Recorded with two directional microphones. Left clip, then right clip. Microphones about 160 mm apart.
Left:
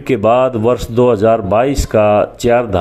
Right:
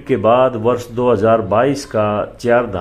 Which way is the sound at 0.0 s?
35° left (ahead or behind).